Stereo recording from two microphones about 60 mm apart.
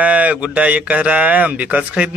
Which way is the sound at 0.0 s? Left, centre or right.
Right.